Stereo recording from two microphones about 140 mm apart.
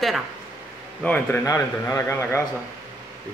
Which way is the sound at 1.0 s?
15° left (ahead or behind).